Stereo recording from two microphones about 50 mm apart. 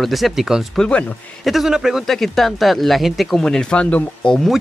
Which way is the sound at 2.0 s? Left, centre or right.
Centre.